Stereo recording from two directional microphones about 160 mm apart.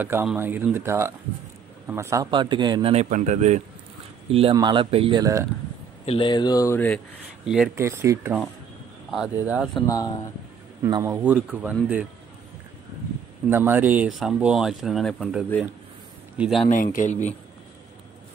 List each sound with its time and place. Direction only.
0.0 s speech: 10° right (ahead or behind)
2.3 s a man's voice: 30° right (ahead or behind)
2.9 s speech: 45° right (ahead or behind)
4.3 s speech: 35° right (ahead or behind)
6.0 s speech: 30° left (ahead or behind)
7.4 s speech: 5° right (ahead or behind)
7.7 s speech: 15° right (ahead or behind)
9.1 s speech: 5° right (ahead or behind)
9.8 s speech: 20° left (ahead or behind)
10.8 s a man's voice: 20° right (ahead or behind)
11.2 s speech: 10° right (ahead or behind)
13.5 s speech: 10° right (ahead or behind)
16.6 s speech: 55° left (ahead or behind)